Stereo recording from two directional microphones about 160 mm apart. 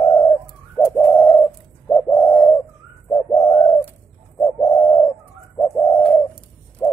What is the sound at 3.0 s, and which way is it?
Bird, 25° left (ahead or behind).